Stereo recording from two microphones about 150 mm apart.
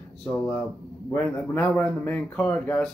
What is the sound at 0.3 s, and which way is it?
Speech, 10° left (ahead or behind).